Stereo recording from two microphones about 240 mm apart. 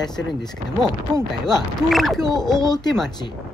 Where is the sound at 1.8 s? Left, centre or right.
Centre.